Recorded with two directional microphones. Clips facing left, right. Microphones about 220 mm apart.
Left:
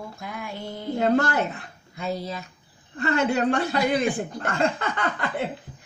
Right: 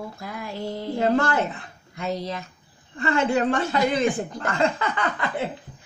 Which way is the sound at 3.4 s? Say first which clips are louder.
Even; 40° left (ahead or behind).